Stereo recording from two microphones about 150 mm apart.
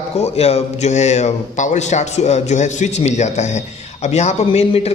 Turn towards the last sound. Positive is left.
turn(degrees=45)  # may be behind; listen again after turning